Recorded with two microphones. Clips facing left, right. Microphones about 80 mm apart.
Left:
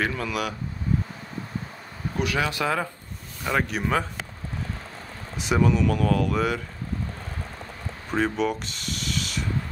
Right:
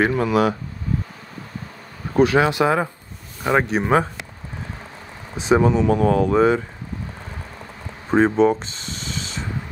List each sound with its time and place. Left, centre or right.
0.0 s speech: right
2.1 s speech: right
5.5 s speech: right
8.1 s a sound: right